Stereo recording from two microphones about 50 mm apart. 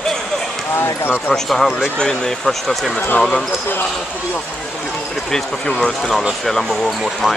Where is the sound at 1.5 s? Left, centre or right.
Centre.